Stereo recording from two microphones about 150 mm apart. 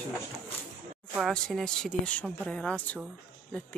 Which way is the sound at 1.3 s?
5° left (ahead or behind).